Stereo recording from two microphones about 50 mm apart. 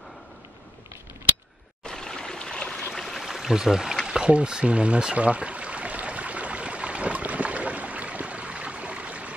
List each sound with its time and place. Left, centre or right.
1.9 s stream: centre
2.9 s a sound: centre
3.3 s speech: centre
4.0 s pour: centre